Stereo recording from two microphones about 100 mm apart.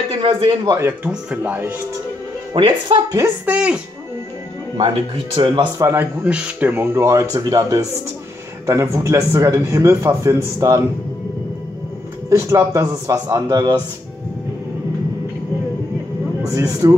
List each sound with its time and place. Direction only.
0.2 s speech: 60° right (ahead or behind)
0.7 s speech: 30° right (ahead or behind)
1.0 s speech: 15° right (ahead or behind)
2.5 s speech: 55° right (ahead or behind)
3.4 s speech: 10° right (ahead or behind)
5.1 s speech: 60° right (ahead or behind)
5.8 s speech: 30° right (ahead or behind)
6.2 s a man's voice: 10° right (ahead or behind); by 10.8 s 30° right (ahead or behind)
12.3 s a man's voice: 25° right (ahead or behind)
16.4 s a man's voice: 35° right (ahead or behind)